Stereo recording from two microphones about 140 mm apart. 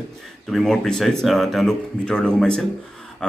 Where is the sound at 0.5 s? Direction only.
Centre (ahead or behind).